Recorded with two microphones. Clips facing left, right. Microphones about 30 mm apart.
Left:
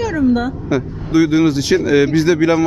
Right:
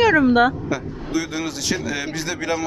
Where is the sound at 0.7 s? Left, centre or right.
Centre.